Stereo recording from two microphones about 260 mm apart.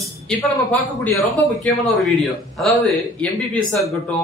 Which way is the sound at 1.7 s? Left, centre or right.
Centre.